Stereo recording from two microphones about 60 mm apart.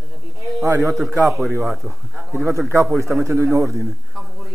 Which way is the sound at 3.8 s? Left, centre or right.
Centre.